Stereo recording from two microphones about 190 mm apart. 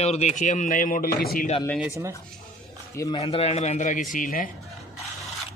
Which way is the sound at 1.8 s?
15° right (ahead or behind).